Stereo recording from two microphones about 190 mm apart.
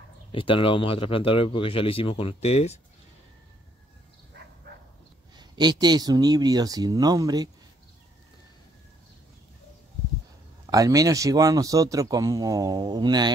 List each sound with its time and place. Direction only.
0.3 s speech: 25° left (ahead or behind)
5.3 s speech: 20° right (ahead or behind)
10.7 s speech: 20° right (ahead or behind)